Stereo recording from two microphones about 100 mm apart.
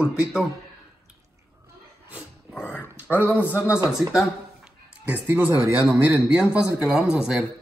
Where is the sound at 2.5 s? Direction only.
5° right (ahead or behind).